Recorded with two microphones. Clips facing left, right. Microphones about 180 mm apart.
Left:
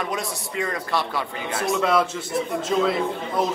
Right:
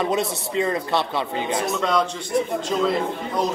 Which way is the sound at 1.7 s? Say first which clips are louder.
Left 5 dB; 5° left (ahead or behind).